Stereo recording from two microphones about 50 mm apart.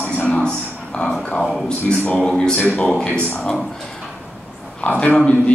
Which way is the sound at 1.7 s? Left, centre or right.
Left.